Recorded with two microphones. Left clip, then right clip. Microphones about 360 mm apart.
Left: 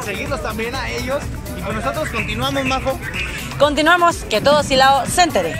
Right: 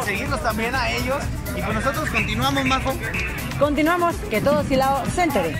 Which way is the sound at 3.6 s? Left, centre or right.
Left.